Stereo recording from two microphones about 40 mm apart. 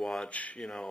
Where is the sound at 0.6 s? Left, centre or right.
Left.